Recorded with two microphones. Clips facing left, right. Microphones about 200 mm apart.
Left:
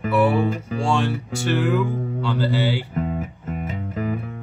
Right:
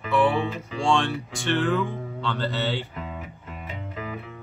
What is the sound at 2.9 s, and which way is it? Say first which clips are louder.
Music: left 10 dB; 45° left (ahead or behind).